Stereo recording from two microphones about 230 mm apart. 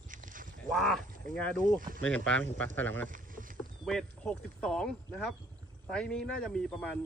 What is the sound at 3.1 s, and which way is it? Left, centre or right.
Rowboat, right.